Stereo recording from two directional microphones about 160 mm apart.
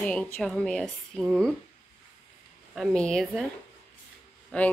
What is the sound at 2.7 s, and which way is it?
Speech, centre (ahead or behind).